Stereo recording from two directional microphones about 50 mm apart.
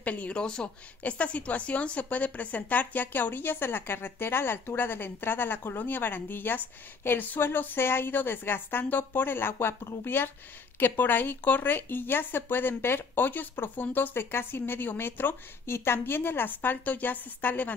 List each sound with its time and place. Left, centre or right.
0.0 s a woman's voice: left
15.6 s a woman's voice: left